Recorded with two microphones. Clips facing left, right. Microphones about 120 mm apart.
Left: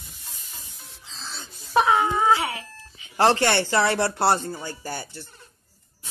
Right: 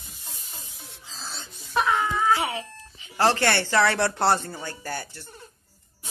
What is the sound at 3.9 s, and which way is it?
Speech, 10° left (ahead or behind).